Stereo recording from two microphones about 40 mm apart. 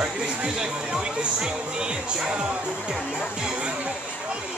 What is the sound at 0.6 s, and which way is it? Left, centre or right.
Speech, centre.